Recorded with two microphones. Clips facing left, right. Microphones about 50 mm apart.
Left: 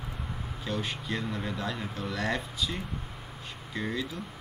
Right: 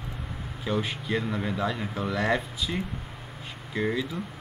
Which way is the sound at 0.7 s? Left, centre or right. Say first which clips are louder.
Right 5 dB; centre.